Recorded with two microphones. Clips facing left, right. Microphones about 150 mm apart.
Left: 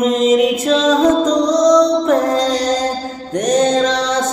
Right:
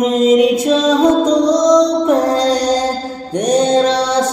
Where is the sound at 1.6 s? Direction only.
10° right (ahead or behind).